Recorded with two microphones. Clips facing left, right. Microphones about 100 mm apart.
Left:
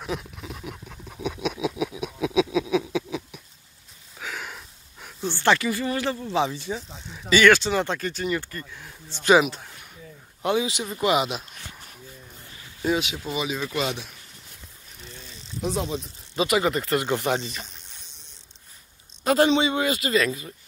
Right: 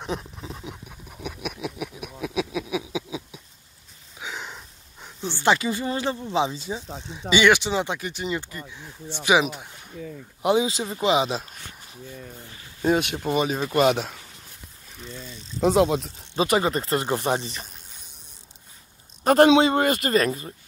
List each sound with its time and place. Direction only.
0.0 s a sound: 30° right (ahead or behind)
1.1 s a sound: 5° right (ahead or behind)
5.0 s speech: 15° right (ahead or behind)
10.7 s speech: 30° right (ahead or behind)
12.8 s speech: 50° right (ahead or behind)
13.7 s speech: 75° right (ahead or behind)
15.6 s speech: 70° right (ahead or behind)
16.3 s speech: 35° right (ahead or behind)
19.2 s speech: 50° right (ahead or behind)